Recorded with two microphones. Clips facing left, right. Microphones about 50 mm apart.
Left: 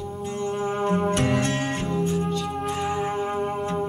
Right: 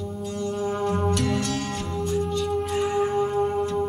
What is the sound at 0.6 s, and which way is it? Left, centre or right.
Music, left.